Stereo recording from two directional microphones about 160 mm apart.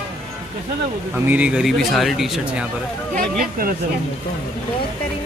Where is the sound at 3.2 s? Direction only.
65° right (ahead or behind).